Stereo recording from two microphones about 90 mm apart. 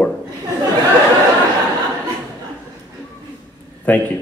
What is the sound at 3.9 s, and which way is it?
Speech, 20° left (ahead or behind).